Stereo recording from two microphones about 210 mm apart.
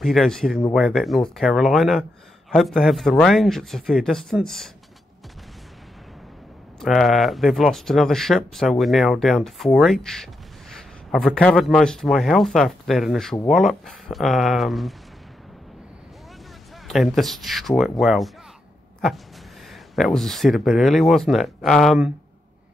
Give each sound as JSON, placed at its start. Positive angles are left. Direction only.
{"t": 0.0, "sound": "speech", "side_deg": 0}
{"t": 6.8, "sound": "speech", "side_deg": 0}
{"t": 16.8, "sound": "speech", "side_deg": 0}
{"t": 20.0, "sound": "speech", "side_deg": 0}